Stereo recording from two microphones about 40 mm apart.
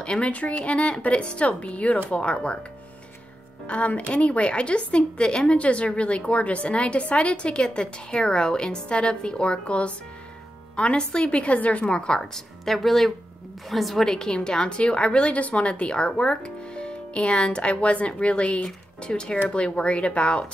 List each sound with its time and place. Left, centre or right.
0.0 s speech: left
3.6 s a woman's voice: left
11.8 s a woman's voice: left
12.2 s speech: centre
14.0 s a woman's voice: centre